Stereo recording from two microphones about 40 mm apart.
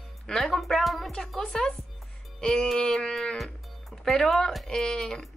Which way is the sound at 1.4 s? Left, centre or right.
Centre.